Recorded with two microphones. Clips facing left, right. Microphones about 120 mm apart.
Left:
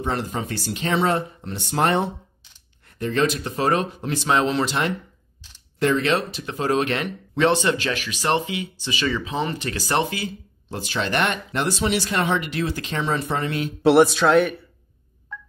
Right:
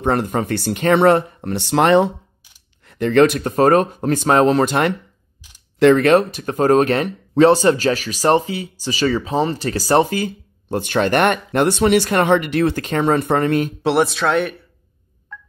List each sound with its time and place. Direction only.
0.0 s speech: 55° right (ahead or behind); by 2.1 s 90° right
2.9 s speech: 70° right (ahead or behind); by 4.9 s 55° right (ahead or behind)
5.8 s speech: 65° right (ahead or behind)
13.8 s music: centre (ahead or behind)